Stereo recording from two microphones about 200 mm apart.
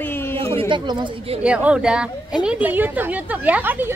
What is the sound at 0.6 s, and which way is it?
Speech, 25° right (ahead or behind).